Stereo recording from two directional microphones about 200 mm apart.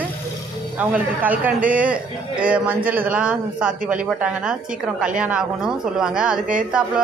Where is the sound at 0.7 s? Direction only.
10° right (ahead or behind).